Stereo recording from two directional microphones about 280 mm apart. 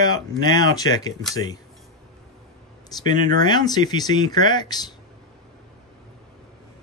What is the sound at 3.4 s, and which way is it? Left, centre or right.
Speech, centre.